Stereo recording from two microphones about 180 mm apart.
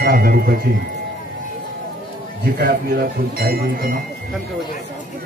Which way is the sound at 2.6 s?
55° right (ahead or behind).